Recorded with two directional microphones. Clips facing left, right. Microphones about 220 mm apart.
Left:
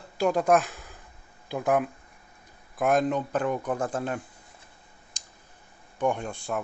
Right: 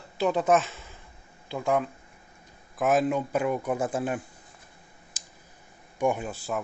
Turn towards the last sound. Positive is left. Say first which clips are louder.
# even
turn(degrees=-5)  # may be behind; listen again after turning